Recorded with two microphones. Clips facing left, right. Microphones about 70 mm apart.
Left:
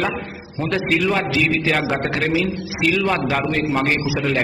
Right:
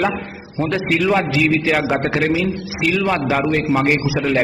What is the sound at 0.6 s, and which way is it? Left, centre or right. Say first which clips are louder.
A man's voice: right 2 dB; centre.